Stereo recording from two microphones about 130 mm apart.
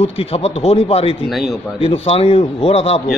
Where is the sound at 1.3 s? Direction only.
Centre (ahead or behind).